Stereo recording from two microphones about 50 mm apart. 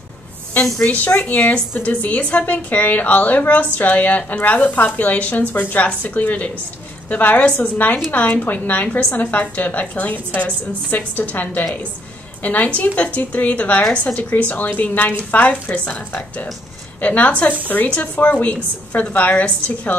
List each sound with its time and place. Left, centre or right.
0.8 s a woman's voice: left
17.0 s a woman's voice: left